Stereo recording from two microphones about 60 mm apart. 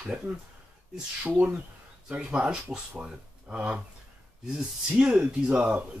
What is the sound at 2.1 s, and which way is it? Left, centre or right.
Speech, centre.